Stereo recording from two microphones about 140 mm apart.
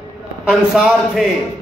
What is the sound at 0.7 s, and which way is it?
Speech, 5° right (ahead or behind).